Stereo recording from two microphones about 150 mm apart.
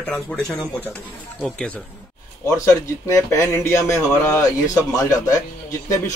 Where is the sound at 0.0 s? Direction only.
5° left (ahead or behind).